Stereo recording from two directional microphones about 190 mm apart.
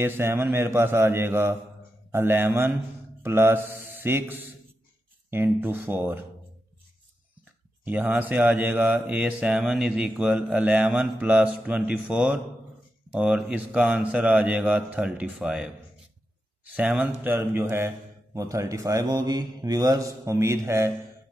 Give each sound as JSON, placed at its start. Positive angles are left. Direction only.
{"t": 0.0, "sound": "speech", "side_deg": -10}
{"t": 7.8, "sound": "speech", "side_deg": -10}
{"t": 16.7, "sound": "speech", "side_deg": -10}